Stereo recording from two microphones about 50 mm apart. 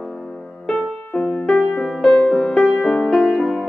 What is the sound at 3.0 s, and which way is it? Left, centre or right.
Music, centre.